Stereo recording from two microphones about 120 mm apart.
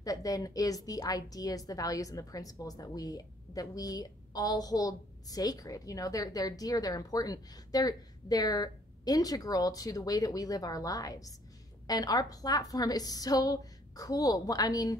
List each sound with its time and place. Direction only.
0.0 s a woman's voice: 30° left (ahead or behind)